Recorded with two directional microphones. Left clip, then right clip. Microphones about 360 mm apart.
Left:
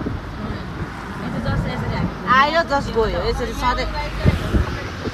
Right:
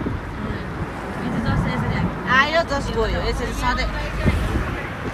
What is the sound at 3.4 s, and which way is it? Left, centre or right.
Speech, centre.